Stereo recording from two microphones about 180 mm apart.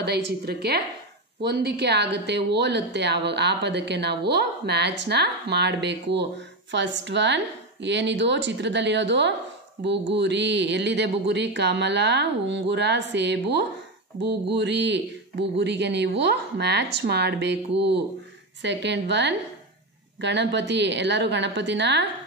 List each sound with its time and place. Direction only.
0.0 s a woman's voice: 65° right (ahead or behind)